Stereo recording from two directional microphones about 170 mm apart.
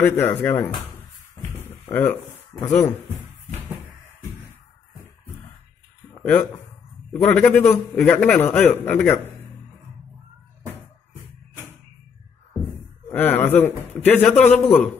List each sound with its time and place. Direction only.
0.0 s a man's voice: 10° left (ahead or behind)
1.6 s a sound: 10° left (ahead or behind)
2.6 s a man's voice: 10° left (ahead or behind)
6.1 s a sound: 10° left (ahead or behind)
7.1 s a man's voice: 5° left (ahead or behind)
13.1 s a man's voice: 10° left (ahead or behind)